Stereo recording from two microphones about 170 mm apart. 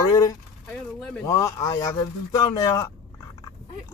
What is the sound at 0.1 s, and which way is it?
Speech, 20° left (ahead or behind).